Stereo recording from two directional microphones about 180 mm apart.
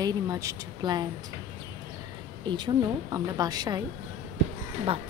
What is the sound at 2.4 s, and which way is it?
Speech, 25° right (ahead or behind).